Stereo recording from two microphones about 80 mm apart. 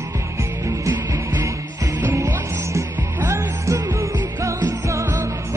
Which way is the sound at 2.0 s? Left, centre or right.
Right.